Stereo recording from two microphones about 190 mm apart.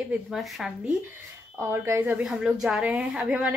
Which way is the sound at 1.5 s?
15° right (ahead or behind).